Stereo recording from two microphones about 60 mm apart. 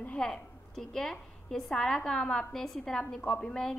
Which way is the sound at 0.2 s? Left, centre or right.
Centre.